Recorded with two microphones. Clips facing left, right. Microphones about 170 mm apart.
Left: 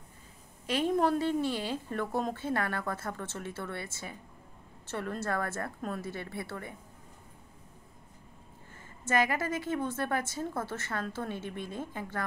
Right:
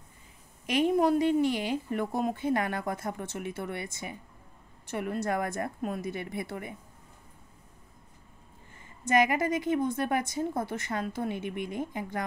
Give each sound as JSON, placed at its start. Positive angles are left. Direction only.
{"t": 0.7, "sound": "a woman's voice", "side_deg": -15}
{"t": 9.0, "sound": "a woman's voice", "side_deg": -15}